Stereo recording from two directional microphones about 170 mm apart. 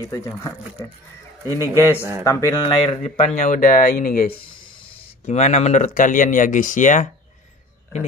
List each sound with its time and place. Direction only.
0.1 s speech: 15° left (ahead or behind)
1.7 s a man's voice: 15° right (ahead or behind)
2.2 s speech: 20° left (ahead or behind)
2.6 s speech: 30° left (ahead or behind)
3.0 s speech: 45° left (ahead or behind)
4.5 s speech: 30° left (ahead or behind); by 7.1 s 50° left (ahead or behind)